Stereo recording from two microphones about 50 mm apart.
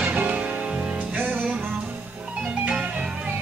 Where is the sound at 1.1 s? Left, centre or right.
Right.